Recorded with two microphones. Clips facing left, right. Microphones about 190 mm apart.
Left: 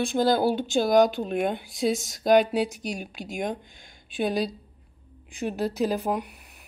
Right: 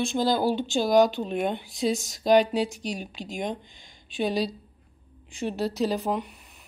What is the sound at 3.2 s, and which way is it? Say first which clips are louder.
Speech: left 2 dB; 50° left (ahead or behind).